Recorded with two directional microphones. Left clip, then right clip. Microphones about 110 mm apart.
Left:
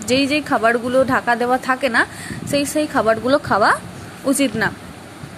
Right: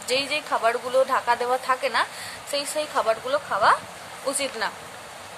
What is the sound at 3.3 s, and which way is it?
Speech, 60° left (ahead or behind).